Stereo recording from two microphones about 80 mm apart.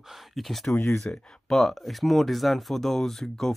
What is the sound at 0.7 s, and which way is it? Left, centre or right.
Speech, left.